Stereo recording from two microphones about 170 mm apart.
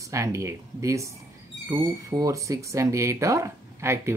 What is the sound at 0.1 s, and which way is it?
Speech, 15° right (ahead or behind).